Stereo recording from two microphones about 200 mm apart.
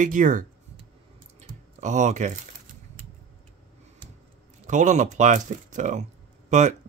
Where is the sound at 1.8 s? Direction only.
35° right (ahead or behind).